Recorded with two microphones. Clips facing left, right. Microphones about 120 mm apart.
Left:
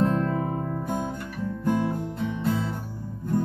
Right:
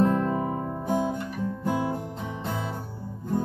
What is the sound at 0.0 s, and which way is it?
Guitar, 15° right (ahead or behind).